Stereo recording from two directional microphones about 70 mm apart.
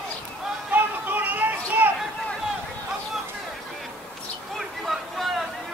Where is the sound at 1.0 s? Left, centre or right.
Right.